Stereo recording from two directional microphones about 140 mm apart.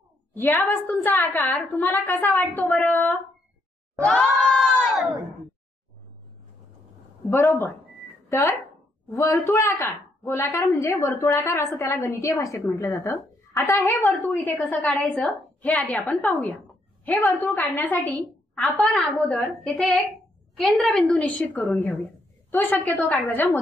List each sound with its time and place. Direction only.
0.3 s a woman's voice: 15° left (ahead or behind)
4.0 s crowd: 10° left (ahead or behind)
7.2 s a woman's voice: 20° left (ahead or behind)
18.8 s a woman's voice: centre (ahead or behind)